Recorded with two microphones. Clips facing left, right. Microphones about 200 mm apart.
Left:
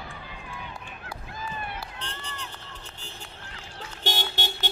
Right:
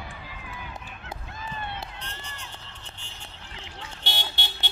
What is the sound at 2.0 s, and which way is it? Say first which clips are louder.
Run: left 3 dB; 35° left (ahead or behind).